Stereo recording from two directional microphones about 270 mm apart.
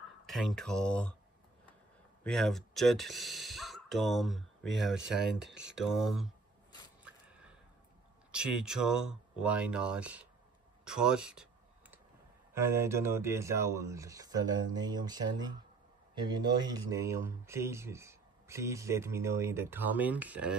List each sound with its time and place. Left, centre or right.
0.3 s speech: centre
2.2 s speech: centre
8.3 s speech: centre
12.5 s speech: centre